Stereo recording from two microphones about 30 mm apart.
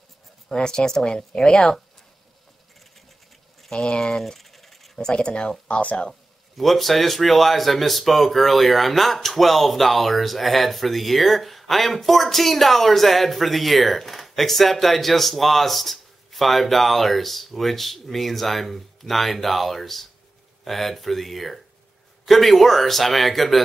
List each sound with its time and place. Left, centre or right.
0.6 s speech: left
3.8 s speech: left
4.4 s a sound: centre
4.9 s speech: left
5.7 s speech: left
6.5 s speech: centre